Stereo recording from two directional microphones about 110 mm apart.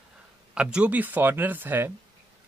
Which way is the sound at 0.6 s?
10° right (ahead or behind).